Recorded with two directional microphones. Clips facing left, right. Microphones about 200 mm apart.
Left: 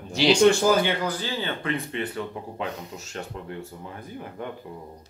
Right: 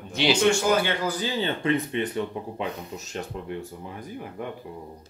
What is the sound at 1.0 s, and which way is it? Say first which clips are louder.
Speech: right 2 dB; 15° right (ahead or behind).